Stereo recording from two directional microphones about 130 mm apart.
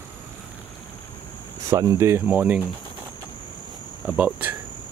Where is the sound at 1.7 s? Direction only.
25° right (ahead or behind).